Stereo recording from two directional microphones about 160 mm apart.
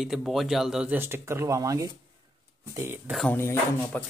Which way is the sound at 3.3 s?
15° left (ahead or behind).